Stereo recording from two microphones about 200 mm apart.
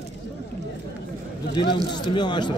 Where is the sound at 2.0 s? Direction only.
20° left (ahead or behind).